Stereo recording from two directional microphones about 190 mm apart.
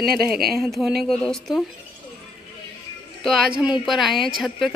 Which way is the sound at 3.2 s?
Centre (ahead or behind).